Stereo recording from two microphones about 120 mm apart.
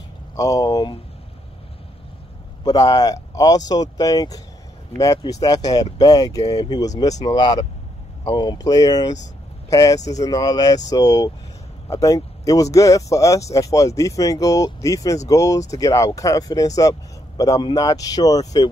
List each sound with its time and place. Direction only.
0.4 s speech: 30° left (ahead or behind)
2.6 s speech: 30° left (ahead or behind)